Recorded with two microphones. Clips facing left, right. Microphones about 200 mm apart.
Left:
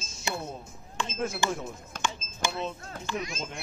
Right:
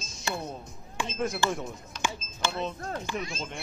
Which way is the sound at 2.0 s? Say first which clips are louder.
Even; 50° left (ahead or behind).